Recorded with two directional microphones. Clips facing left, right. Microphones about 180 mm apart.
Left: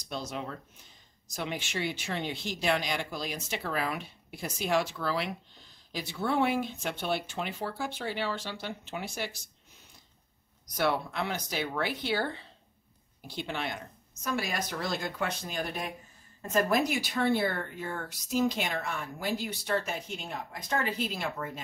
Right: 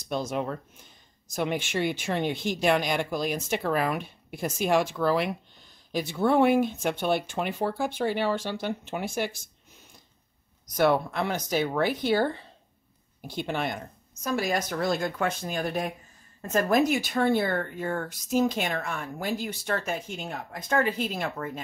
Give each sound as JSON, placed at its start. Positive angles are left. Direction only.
{"t": 0.0, "sound": "speech", "side_deg": -50}
{"t": 10.8, "sound": "speech", "side_deg": -50}